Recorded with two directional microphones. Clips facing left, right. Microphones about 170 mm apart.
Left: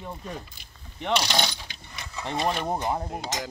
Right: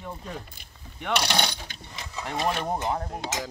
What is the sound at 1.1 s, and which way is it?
Coin, 55° right (ahead or behind).